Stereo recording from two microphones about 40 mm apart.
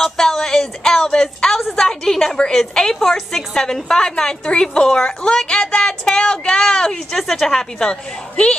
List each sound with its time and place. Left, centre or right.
0.0 s speech: centre